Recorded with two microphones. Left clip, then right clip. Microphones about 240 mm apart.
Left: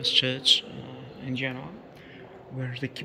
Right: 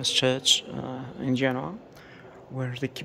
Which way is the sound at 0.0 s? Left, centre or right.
Centre.